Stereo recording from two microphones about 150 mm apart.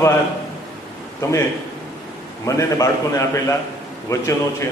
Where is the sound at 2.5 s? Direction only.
20° left (ahead or behind).